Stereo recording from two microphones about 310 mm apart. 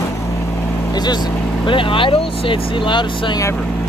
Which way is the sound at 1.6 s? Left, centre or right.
Centre.